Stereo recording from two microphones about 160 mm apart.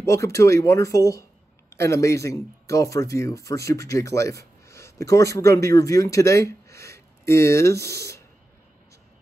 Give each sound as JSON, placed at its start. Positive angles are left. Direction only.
{"t": 0.0, "sound": "speech", "side_deg": 20}